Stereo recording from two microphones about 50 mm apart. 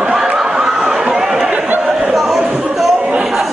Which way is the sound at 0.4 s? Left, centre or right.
Centre.